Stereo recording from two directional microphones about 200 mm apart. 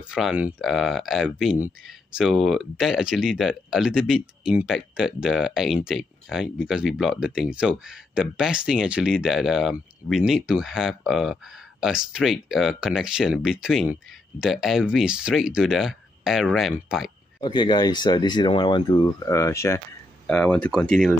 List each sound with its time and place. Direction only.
0.1 s speech: 5° right (ahead or behind)
17.4 s speech: 20° left (ahead or behind); by 21.1 s 5° left (ahead or behind)